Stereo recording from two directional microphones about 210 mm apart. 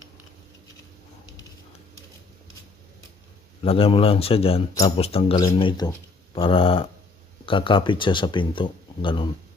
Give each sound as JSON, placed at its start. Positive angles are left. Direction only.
{"t": 3.6, "sound": "speech", "side_deg": 25}